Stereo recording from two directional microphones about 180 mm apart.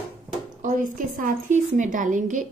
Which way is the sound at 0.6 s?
50° right (ahead or behind).